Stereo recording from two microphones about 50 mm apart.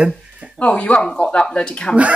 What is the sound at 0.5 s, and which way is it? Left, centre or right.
Speech, left.